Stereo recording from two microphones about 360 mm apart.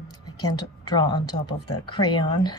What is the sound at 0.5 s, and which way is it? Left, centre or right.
Speech, centre.